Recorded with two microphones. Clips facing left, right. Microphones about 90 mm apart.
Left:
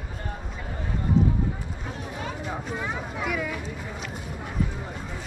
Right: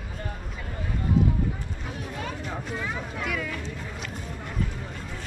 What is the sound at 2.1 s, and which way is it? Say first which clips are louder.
Vehicle: left 2 dB; 15° left (ahead or behind).